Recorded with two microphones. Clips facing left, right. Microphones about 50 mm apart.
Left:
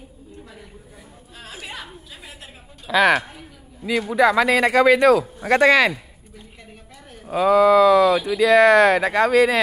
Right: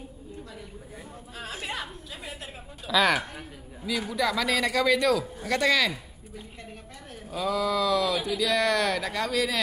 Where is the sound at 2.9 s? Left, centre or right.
Left.